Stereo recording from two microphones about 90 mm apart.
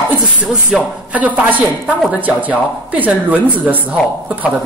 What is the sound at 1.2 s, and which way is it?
A woman's voice, 20° right (ahead or behind).